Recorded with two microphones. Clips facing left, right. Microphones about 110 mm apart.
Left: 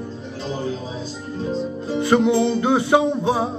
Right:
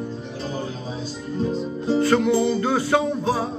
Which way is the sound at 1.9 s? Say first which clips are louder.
Left 2 dB; 20° left (ahead or behind).